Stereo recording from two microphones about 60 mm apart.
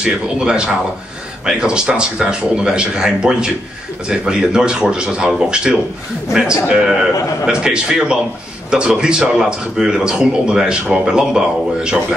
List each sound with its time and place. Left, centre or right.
0.0 s a man's voice: centre